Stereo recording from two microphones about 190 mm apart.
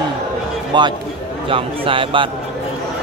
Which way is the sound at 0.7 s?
25° right (ahead or behind).